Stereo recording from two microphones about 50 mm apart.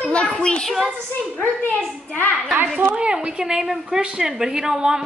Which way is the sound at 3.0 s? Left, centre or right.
Right.